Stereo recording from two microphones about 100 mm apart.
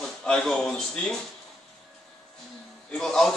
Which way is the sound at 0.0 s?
5° left (ahead or behind).